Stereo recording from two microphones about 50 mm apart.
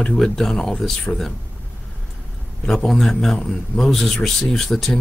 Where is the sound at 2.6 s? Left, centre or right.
Centre.